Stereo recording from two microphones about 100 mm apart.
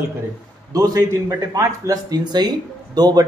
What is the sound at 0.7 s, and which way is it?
Speech, 35° right (ahead or behind).